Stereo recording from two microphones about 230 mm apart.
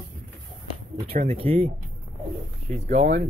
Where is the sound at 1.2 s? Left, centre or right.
Right.